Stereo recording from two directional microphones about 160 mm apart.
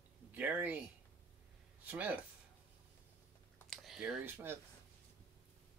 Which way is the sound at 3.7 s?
Centre (ahead or behind).